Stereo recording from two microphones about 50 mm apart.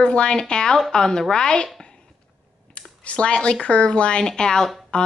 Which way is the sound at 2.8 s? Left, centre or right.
Left.